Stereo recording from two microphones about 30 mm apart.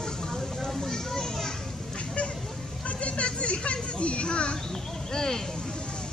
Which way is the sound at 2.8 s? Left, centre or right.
Left.